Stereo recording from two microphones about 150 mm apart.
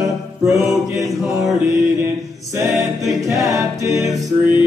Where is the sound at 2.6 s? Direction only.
Centre (ahead or behind).